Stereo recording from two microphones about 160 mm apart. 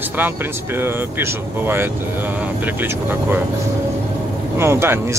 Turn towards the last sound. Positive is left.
turn(degrees=-15)  # may be behind; listen again after turning